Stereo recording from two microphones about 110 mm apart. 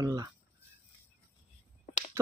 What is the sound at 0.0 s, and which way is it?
Speech, 30° right (ahead or behind).